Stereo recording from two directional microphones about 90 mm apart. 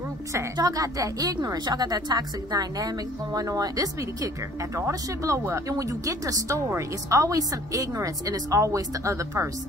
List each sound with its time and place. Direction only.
0.6 s a woman's voice: 40° right (ahead or behind)